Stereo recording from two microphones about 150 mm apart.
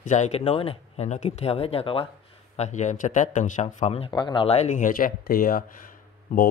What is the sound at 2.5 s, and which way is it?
Speech, 50° left (ahead or behind).